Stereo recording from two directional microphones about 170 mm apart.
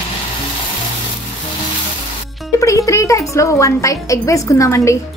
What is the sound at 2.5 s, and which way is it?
Music, 20° left (ahead or behind).